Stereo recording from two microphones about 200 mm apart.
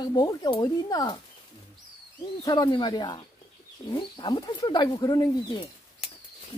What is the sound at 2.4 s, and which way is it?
Speech, 20° left (ahead or behind).